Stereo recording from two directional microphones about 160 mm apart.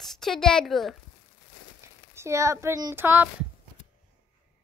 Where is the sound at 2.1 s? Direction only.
15° right (ahead or behind).